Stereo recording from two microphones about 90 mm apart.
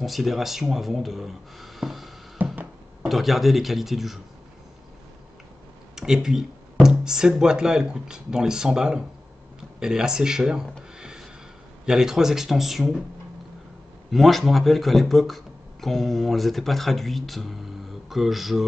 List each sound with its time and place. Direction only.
0.0 s speech: centre (ahead or behind)
2.5 s music: 15° right (ahead or behind)
3.1 s speech: centre (ahead or behind)
5.9 s speech: 5° right (ahead or behind)
11.0 s a sound: 10° right (ahead or behind)
11.8 s speech: 5° right (ahead or behind)
14.1 s speech: centre (ahead or behind)